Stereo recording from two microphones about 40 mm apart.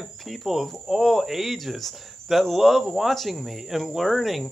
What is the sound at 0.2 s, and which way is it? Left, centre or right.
Speech, centre.